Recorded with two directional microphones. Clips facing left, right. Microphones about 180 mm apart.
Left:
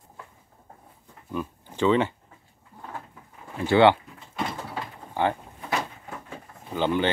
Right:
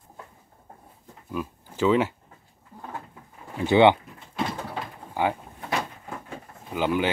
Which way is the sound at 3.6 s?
20° right (ahead or behind).